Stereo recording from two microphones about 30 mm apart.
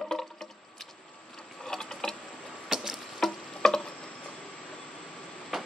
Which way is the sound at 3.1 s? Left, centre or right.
Centre.